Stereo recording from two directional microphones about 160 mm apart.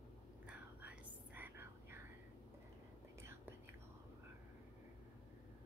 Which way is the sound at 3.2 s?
15° right (ahead or behind).